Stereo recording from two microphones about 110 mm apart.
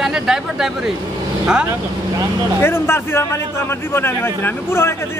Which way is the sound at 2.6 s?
20° left (ahead or behind).